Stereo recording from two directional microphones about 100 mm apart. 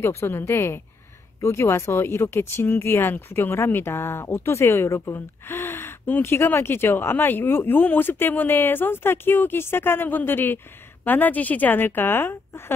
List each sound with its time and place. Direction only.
0.0 s speech: 25° left (ahead or behind)